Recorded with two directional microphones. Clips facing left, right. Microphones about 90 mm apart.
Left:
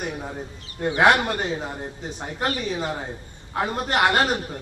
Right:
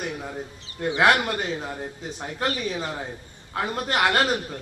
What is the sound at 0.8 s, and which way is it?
A woman's voice, 25° left (ahead or behind).